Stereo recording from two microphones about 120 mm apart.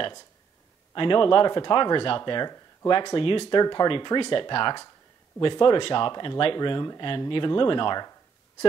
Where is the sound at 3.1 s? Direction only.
45° left (ahead or behind).